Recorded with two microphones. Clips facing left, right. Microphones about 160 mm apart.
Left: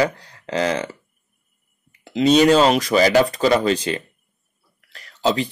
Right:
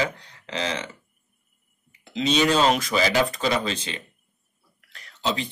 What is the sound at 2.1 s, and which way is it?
Speech, 45° left (ahead or behind).